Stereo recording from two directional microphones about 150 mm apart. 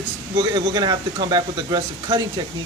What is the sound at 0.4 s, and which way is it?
Speech, 30° right (ahead or behind).